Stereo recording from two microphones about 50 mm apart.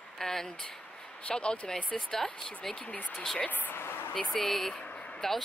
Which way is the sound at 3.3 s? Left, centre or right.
Left.